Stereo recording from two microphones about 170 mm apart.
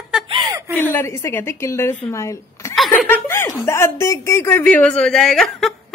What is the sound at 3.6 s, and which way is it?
A woman's voice, 15° left (ahead or behind).